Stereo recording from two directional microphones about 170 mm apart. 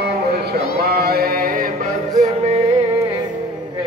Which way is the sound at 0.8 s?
65° right (ahead or behind).